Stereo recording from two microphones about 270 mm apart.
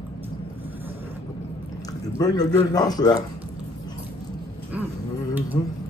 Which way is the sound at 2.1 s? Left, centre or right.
Centre.